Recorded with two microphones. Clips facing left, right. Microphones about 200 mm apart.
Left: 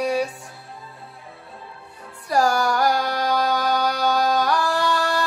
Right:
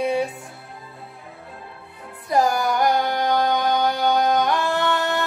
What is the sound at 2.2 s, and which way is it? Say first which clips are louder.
Music: even; 20° right (ahead or behind).